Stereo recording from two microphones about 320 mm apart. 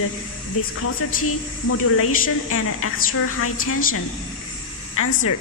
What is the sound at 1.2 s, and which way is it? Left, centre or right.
A woman's voice, left.